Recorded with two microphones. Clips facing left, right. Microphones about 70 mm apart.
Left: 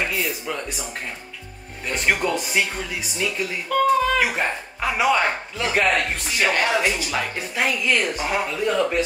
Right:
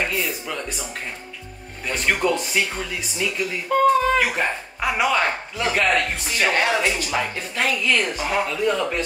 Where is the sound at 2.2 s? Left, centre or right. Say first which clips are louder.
Right 2 dB; centre.